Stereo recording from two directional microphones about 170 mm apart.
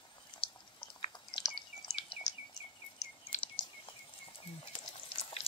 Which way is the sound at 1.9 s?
30° left (ahead or behind).